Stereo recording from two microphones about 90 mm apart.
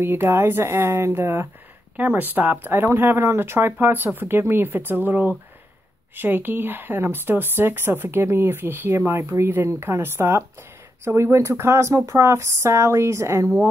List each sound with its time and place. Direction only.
0.0 s speech: 25° right (ahead or behind)